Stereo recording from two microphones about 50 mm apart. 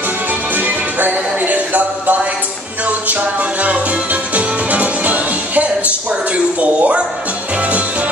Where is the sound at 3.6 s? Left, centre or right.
Right.